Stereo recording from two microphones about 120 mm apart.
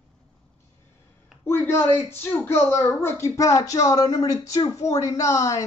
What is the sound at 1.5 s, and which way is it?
A woman's voice, 20° left (ahead or behind).